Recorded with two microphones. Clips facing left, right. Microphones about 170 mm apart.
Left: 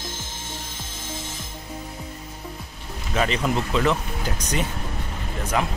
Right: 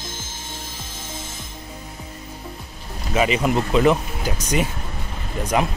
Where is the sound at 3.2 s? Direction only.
10° right (ahead or behind).